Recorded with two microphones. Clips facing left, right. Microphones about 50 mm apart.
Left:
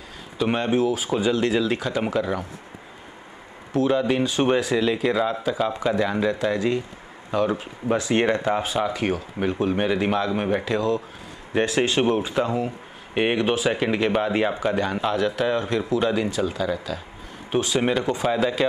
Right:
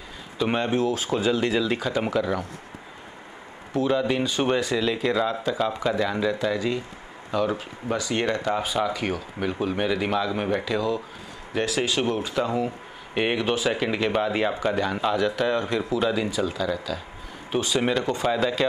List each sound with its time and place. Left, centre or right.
0.4 s speech: centre
3.7 s speech: centre
8.1 s speech: left; by 11.0 s centre
12.0 s speech: centre
12.4 s speech: centre
13.1 s speech: centre